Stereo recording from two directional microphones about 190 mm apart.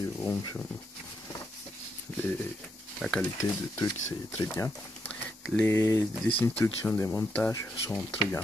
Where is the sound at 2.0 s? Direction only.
10° left (ahead or behind).